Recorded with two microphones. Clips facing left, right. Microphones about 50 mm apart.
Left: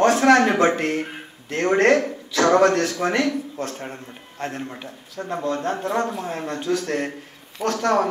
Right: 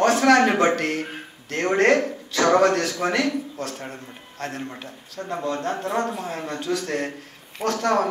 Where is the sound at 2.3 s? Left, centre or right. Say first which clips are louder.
Left 1 dB; left.